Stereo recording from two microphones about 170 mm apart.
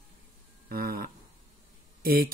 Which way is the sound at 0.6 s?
60° right (ahead or behind).